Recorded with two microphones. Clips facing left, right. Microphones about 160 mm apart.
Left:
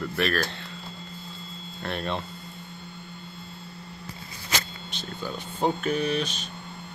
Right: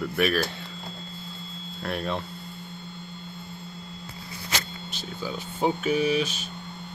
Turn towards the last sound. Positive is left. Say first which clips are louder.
# right 3 dB
turn(degrees=-5)  # may be behind; listen again after turning